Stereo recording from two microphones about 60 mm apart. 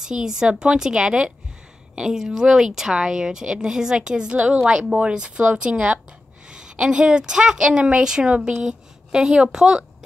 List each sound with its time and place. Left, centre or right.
0.0 s a woman's voice: centre